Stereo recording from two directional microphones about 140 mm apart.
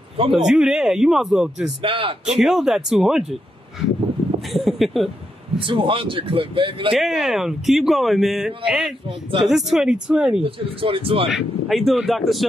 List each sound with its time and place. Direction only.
0.3 s speech: 5° right (ahead or behind)
1.8 s speech: 40° right (ahead or behind)
2.3 s speech: 5° right (ahead or behind)
4.5 s speech: centre (ahead or behind)
5.6 s speech: 35° right (ahead or behind)
6.9 s speech: centre (ahead or behind)
10.4 s speech: 40° right (ahead or behind)
11.2 s speech: centre (ahead or behind)